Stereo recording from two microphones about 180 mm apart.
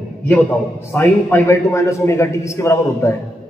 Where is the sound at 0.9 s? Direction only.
10° left (ahead or behind).